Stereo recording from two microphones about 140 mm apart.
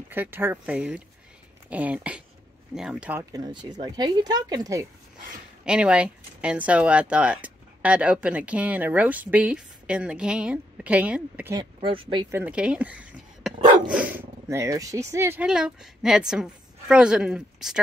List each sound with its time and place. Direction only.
0.1 s speech: 15° right (ahead or behind)
3.2 s speech: 25° right (ahead or behind)
5.7 s speech: 5° right (ahead or behind)
11.5 s speech: 40° right (ahead or behind)
12.3 s speech: 15° right (ahead or behind)
15.4 s a woman's voice: 5° right (ahead or behind)